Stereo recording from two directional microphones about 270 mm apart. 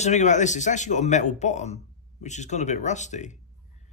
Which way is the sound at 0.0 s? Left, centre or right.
Left.